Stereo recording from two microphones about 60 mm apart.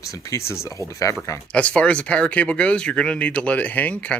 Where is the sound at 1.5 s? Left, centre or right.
Left.